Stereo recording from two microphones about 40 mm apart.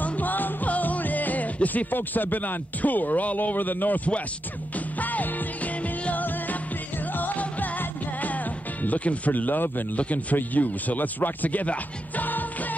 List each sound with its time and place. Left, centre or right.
0.0 s music: left
6.2 s music: left
8.8 s speech: left
9.9 s speech: left
12.3 s music: left